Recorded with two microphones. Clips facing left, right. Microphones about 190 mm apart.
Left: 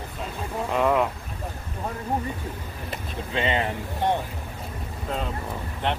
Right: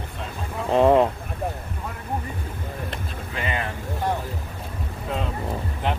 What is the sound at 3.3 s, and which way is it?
Boat, 25° left (ahead or behind).